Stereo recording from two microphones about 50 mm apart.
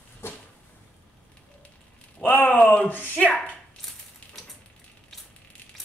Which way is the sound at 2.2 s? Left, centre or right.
Left.